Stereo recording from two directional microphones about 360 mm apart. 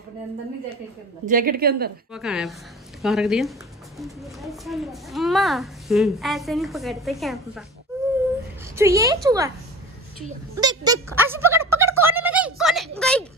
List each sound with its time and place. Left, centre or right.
1.2 s a woman's voice: right
2.1 s a child's voice: centre
8.7 s speech: centre
10.5 s a sound: centre